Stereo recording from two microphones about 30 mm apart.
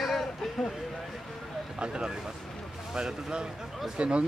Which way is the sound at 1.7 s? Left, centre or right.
Right.